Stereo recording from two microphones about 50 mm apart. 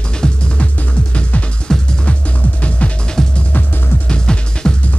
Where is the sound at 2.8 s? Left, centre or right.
Left.